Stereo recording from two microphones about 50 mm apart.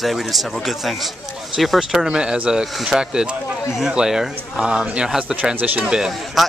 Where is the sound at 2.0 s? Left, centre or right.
Centre.